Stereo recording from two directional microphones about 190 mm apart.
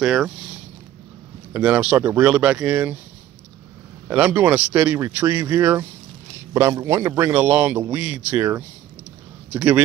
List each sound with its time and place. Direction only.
0.0 s speech: 5° right (ahead or behind)
1.5 s a man's voice: 5° right (ahead or behind)
4.1 s a man's voice: 10° right (ahead or behind)